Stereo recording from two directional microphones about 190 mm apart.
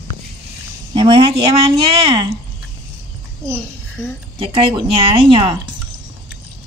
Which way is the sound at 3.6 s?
5° left (ahead or behind).